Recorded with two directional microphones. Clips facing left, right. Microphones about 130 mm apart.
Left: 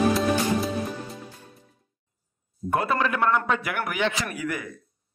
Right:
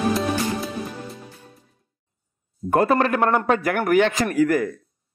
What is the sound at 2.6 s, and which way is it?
A man's voice, 40° right (ahead or behind).